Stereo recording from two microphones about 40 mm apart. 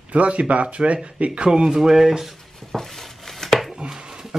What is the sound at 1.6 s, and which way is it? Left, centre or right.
Speech, centre.